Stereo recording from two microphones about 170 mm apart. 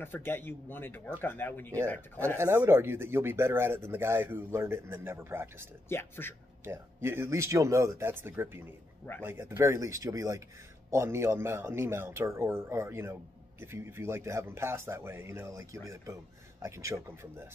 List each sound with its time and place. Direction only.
0.0 s speech: 10° left (ahead or behind)
2.3 s speech: 15° right (ahead or behind)
5.9 s speech: 15° left (ahead or behind)
6.6 s speech: 15° right (ahead or behind)